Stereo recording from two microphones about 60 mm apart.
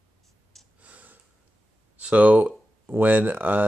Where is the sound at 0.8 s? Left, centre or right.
Right.